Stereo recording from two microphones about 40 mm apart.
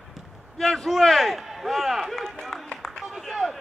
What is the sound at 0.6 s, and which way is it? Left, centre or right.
Speech, centre.